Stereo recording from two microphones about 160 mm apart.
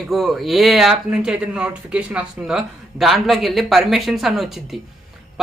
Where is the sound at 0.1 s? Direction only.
Centre (ahead or behind).